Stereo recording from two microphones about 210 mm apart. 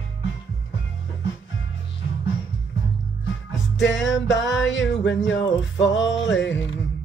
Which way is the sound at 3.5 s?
60° left (ahead or behind).